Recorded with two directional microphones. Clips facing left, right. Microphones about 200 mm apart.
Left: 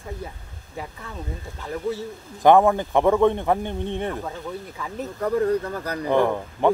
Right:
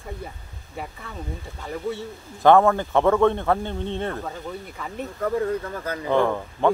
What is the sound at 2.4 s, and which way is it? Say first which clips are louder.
Speech: even; 15° left (ahead or behind).